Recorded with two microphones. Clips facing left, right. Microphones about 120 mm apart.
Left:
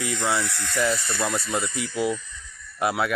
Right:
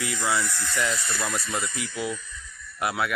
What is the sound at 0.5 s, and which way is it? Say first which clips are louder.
Speech: even; 70° left (ahead or behind).